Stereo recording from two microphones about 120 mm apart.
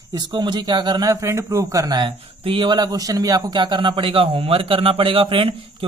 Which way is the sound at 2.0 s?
45° right (ahead or behind).